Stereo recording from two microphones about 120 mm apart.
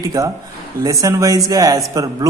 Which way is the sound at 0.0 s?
30° right (ahead or behind).